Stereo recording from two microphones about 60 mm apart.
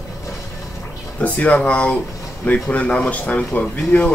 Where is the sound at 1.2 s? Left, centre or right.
Left.